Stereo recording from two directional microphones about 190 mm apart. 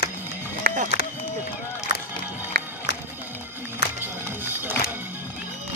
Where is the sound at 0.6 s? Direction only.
50° right (ahead or behind).